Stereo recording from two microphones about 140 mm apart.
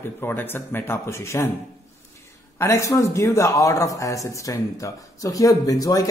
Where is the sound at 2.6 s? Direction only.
20° left (ahead or behind).